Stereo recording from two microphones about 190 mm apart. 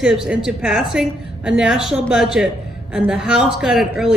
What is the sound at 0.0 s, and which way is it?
A woman's voice, 5° right (ahead or behind).